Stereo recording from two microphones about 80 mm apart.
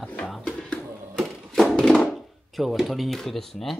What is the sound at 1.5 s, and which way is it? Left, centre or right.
Thunk, centre.